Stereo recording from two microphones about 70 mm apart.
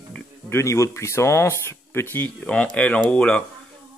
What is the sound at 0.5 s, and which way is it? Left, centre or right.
Speech, left.